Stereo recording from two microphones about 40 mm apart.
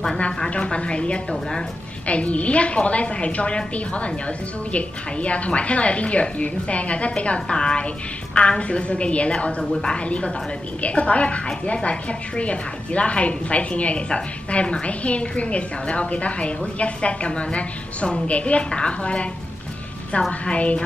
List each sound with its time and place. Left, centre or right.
0.5 s a woman's voice: left
9.6 s speech: centre
9.9 s a woman's voice: left